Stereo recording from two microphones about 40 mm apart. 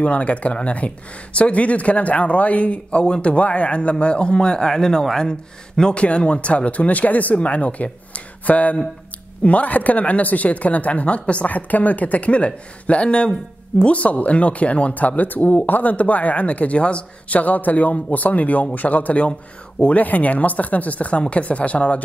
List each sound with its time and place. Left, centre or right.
0.0 s speech: left
6.0 s speech: left
17.4 s a man's voice: left